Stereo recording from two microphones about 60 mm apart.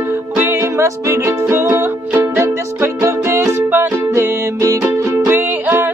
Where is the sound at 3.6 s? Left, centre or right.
Right.